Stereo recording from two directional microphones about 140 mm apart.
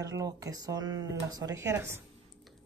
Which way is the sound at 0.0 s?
25° right (ahead or behind).